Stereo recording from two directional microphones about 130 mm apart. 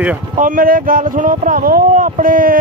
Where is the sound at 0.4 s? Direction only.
90° right.